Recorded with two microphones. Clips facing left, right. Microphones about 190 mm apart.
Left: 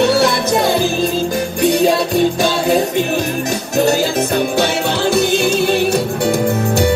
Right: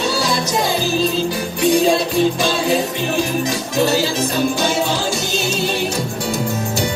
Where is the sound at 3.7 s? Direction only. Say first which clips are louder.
Left 3 dB; 55° left (ahead or behind).